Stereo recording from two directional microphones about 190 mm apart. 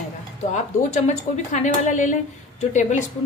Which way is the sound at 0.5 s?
40° left (ahead or behind).